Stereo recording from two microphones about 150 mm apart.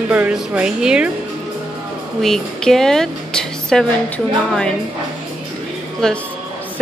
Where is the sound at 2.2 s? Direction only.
Centre (ahead or behind).